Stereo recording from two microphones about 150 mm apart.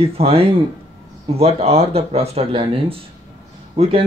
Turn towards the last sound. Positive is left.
turn(degrees=-40)  # may be behind; listen again after turning